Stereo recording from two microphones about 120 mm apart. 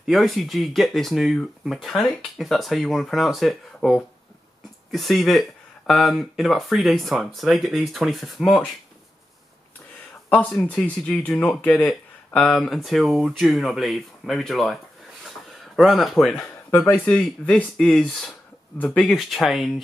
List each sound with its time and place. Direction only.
0.0 s speech: centre (ahead or behind)
10.5 s speech: 10° left (ahead or behind)
15.2 s a sound: centre (ahead or behind)
16.7 s speech: 15° left (ahead or behind); by 19.8 s centre (ahead or behind)